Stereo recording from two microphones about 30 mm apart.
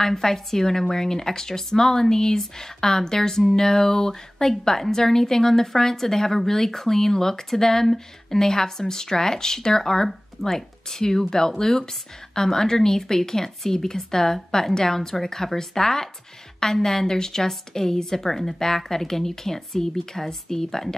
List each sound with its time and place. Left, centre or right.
0.0 s speech: centre